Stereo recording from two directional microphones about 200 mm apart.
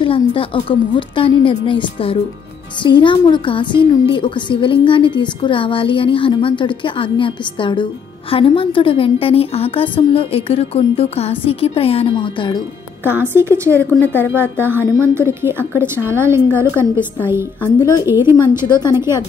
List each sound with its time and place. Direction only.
0.0 s a woman's voice: 25° left (ahead or behind)
13.0 s a woman's voice: 10° right (ahead or behind)
17.7 s a woman's voice: 20° left (ahead or behind)
18.0 s a woman's voice: 10° right (ahead or behind)
18.7 s a woman's voice: 20° left (ahead or behind)